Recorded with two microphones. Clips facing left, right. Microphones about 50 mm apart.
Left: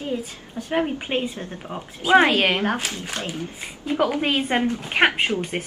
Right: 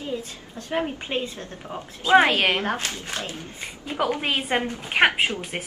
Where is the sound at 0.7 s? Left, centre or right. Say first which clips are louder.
Left 3 dB; centre.